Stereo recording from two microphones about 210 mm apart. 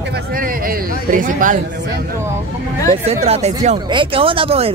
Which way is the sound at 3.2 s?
30° right (ahead or behind).